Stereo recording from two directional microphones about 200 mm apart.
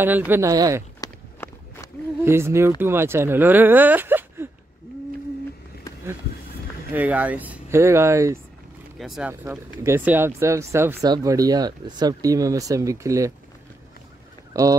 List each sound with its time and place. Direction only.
0.3 s speech: 15° right (ahead or behind)
1.0 s walk: 15° left (ahead or behind)
2.2 s speech: 10° right (ahead or behind)
6.9 s speech: 10° right (ahead or behind)
8.9 s speech: centre (ahead or behind)
9.3 s speech: 10° right (ahead or behind)
14.5 s speech: 15° right (ahead or behind)